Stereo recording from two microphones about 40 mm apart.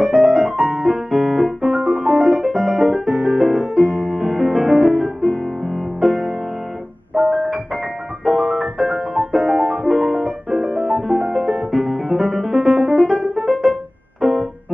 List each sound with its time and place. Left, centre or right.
0.0 s piano: centre
2.9 s music: centre
13.1 s music: centre
13.4 s music: centre
14.2 s keyboard: centre